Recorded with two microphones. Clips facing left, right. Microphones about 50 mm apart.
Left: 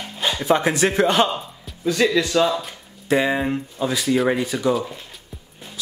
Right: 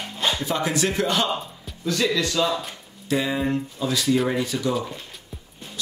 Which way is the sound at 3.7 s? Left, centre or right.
Centre.